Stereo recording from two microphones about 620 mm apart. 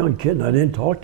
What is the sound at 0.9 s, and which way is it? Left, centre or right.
Speech, right.